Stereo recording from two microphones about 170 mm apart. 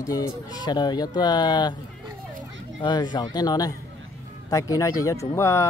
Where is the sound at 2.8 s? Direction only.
25° left (ahead or behind).